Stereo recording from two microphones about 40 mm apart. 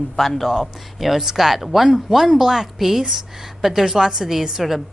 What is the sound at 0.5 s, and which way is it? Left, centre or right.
Speech, centre.